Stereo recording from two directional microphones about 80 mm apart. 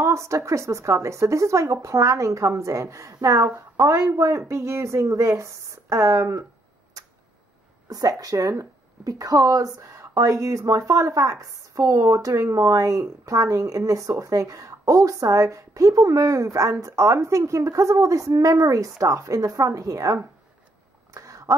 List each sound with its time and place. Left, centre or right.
0.0 s speech: right
7.9 s speech: right
21.1 s a sound: right